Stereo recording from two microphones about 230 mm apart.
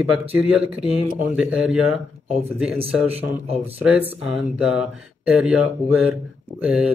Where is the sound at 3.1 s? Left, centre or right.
Right.